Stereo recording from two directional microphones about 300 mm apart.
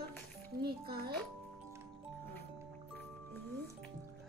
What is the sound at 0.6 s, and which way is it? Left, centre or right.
Speech, right.